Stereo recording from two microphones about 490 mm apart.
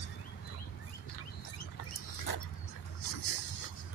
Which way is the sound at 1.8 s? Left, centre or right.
Left.